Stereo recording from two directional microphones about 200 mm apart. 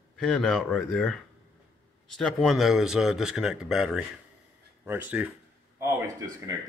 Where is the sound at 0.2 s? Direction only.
Centre (ahead or behind).